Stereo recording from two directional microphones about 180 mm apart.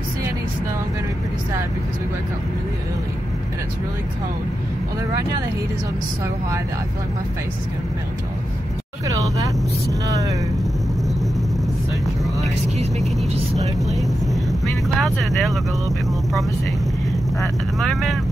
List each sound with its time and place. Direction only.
9.0 s speech: 20° right (ahead or behind)
13.6 s speech: centre (ahead or behind)
17.4 s speech: centre (ahead or behind)